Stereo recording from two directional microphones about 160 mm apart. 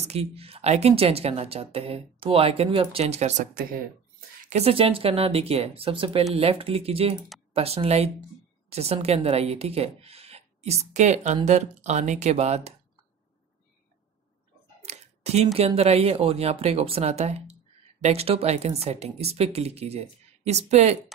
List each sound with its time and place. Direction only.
0.0 s speech: 40° right (ahead or behind)
4.5 s speech: 40° right (ahead or behind)
14.8 s a sound: 40° right (ahead or behind)
15.4 s speech: 40° right (ahead or behind)